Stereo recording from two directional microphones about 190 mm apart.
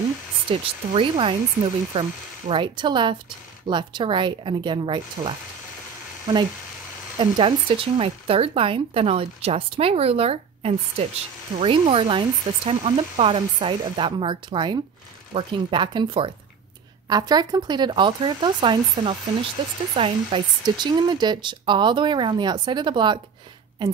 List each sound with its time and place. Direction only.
0.5 s speech: 30° right (ahead or behind)
7.2 s speech: 30° right (ahead or behind)